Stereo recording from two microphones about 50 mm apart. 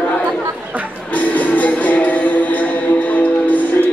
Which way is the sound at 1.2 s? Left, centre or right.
Left.